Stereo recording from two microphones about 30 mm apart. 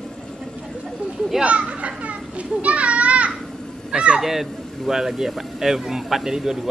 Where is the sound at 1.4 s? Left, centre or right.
Right.